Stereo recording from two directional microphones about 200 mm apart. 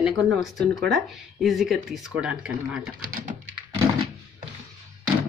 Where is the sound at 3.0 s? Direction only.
45° right (ahead or behind).